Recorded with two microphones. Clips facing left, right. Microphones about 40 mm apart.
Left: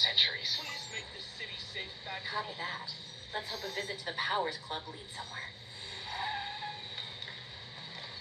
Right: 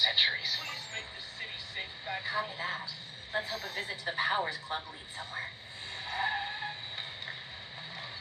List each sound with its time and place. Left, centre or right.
0.0 s speech: centre
5.9 s skidding: right